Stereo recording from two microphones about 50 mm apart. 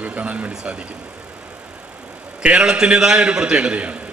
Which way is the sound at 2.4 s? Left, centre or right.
Centre.